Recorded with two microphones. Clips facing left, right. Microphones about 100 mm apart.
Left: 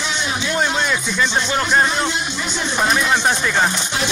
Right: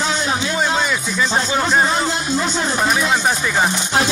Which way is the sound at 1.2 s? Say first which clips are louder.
Right 3 dB; 40° right (ahead or behind).